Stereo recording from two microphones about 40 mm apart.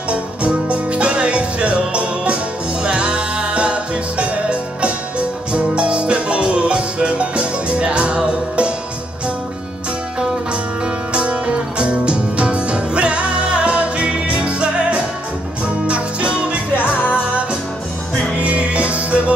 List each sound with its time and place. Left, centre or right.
0.1 s music: right
11.1 s music: right
16.7 s music: left
17.1 s music: right